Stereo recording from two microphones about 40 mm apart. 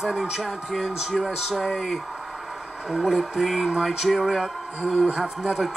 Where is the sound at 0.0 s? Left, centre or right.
Centre.